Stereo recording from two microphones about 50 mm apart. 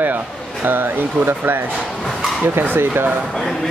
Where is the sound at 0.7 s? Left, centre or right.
Right.